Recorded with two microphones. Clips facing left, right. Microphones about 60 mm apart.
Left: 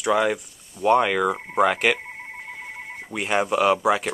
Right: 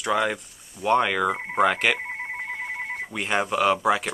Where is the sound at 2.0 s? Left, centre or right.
Right.